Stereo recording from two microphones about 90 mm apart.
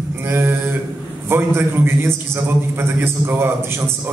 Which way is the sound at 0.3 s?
25° right (ahead or behind).